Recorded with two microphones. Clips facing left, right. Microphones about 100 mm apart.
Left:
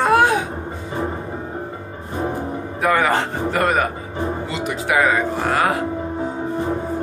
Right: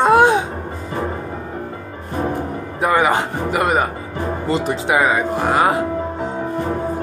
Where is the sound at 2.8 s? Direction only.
20° right (ahead or behind).